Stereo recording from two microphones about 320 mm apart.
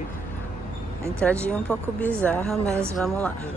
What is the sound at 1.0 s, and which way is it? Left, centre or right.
Speech, centre.